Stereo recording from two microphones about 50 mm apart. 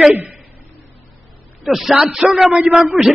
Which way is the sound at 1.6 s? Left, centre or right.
Centre.